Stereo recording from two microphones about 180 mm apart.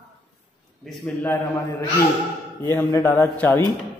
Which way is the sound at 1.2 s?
15° left (ahead or behind).